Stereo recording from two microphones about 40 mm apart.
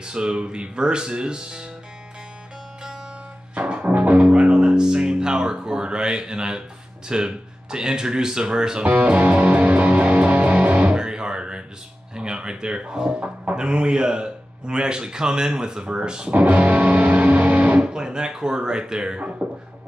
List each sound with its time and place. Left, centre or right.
0.0 s speech: right
3.5 s music: right
4.3 s speech: right
8.8 s music: right
11.0 s music: centre
12.2 s speech: right
16.3 s music: right
17.8 s speech: centre